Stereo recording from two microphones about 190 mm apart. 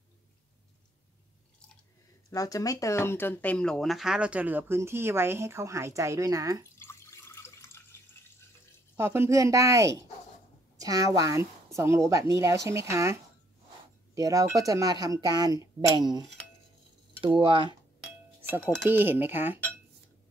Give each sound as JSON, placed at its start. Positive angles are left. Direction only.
{"t": 2.3, "sound": "speech", "side_deg": 20}
{"t": 6.8, "sound": "water tap", "side_deg": 15}
{"t": 8.9, "sound": "a woman's voice", "side_deg": -10}
{"t": 17.4, "sound": "a woman's voice", "side_deg": -25}
{"t": 18.9, "sound": "speech", "side_deg": -10}